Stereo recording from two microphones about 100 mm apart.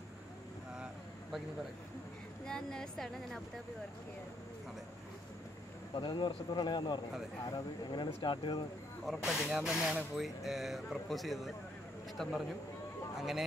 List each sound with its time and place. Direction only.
2.4 s speech: 5° left (ahead or behind)
5.9 s speech: 50° left (ahead or behind)
9.0 s speech: centre (ahead or behind)